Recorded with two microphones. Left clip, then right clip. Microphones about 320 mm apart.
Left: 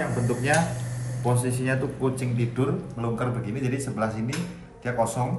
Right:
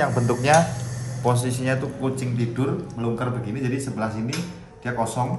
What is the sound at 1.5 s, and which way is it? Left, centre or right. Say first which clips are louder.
A man's voice: right 2 dB; centre.